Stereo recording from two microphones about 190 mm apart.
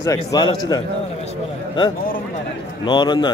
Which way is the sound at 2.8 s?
25° left (ahead or behind).